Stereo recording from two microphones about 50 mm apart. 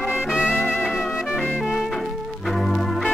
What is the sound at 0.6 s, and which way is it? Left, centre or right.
Music, left.